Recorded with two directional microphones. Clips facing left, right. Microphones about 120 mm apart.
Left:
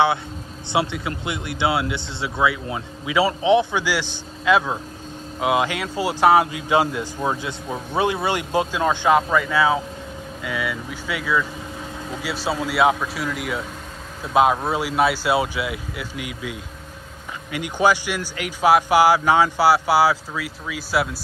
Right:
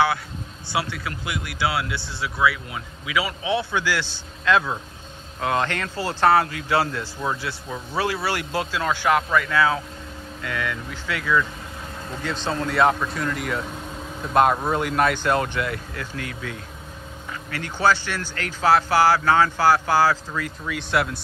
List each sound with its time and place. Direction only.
0.7 s a man's voice: 25° left (ahead or behind); by 21.2 s 5° left (ahead or behind)